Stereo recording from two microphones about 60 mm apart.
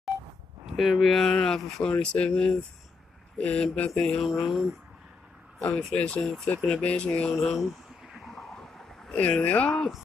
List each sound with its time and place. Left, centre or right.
0.7 s speech: centre
1.8 s speech: centre
4.0 s speech: centre
5.7 s speech: centre
5.9 s speech: centre
6.2 s speech: centre
6.7 s speech: centre
7.3 s speech: centre
8.3 s a sound: centre
9.1 s speech: left